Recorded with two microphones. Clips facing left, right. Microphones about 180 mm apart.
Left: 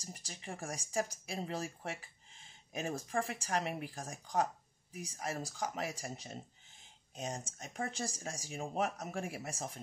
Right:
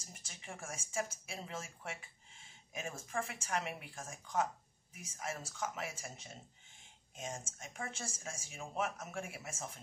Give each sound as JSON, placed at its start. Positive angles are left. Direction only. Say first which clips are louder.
{"t": 0.0, "sound": "speech", "louder": "left 6 dB", "side_deg": 35}